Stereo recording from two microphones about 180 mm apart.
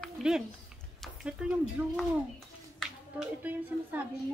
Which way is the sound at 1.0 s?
5° right (ahead or behind).